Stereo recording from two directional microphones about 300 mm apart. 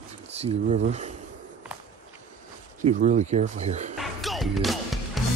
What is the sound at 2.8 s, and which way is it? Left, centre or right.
Speech, right.